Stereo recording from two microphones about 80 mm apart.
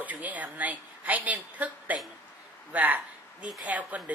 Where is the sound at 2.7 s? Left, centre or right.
Centre.